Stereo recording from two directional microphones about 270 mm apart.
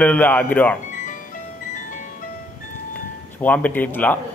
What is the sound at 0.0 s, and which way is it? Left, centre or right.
Speech, centre.